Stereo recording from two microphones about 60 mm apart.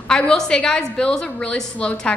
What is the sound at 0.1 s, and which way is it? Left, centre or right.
A woman's voice, centre.